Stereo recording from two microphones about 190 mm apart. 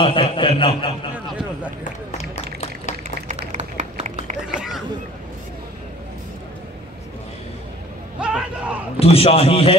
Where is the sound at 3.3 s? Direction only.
40° right (ahead or behind).